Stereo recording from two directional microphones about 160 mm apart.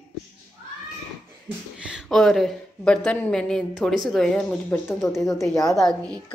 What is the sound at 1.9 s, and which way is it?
A woman's voice, centre (ahead or behind).